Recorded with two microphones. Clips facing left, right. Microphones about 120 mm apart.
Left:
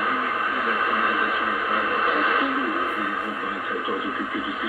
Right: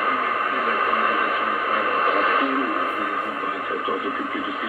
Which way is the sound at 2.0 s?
45° right (ahead or behind).